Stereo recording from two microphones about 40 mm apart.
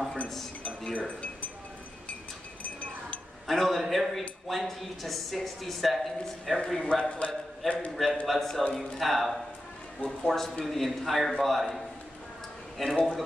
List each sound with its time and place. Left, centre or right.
0.9 s speech: left
2.6 s a sound: left
3.4 s speech: centre
6.7 s speech: centre
7.1 s a man's voice: left
7.9 s speech: centre